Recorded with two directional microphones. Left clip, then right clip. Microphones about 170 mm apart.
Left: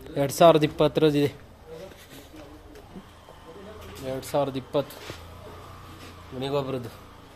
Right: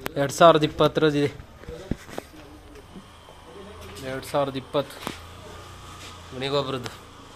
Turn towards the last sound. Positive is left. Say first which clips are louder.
# right 2 dB
turn(degrees=5)  # may be behind; listen again after turning